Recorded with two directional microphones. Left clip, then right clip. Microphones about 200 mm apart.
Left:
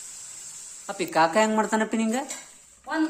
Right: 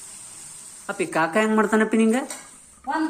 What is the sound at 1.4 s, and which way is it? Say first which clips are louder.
Speech: right 4 dB; 15° left (ahead or behind).